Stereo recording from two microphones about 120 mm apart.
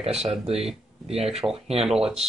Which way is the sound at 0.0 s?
60° right (ahead or behind).